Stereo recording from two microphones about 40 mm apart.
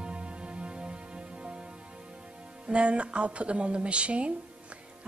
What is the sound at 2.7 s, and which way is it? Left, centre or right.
A woman's voice, right.